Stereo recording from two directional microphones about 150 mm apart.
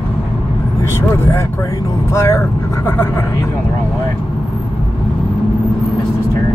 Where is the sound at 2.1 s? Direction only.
15° left (ahead or behind).